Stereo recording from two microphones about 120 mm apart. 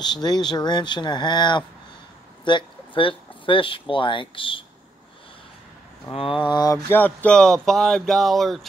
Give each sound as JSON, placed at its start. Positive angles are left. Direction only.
{"t": 0.0, "sound": "speech", "side_deg": 35}
{"t": 6.1, "sound": "speech", "side_deg": 45}
{"t": 6.9, "sound": "speech", "side_deg": 15}